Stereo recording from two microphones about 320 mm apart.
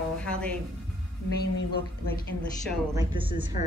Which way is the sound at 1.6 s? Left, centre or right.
Left.